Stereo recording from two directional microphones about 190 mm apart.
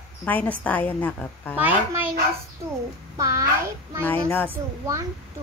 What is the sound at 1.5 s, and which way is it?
Speech, 10° right (ahead or behind).